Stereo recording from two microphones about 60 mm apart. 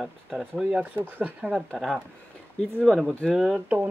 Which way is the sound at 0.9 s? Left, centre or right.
Right.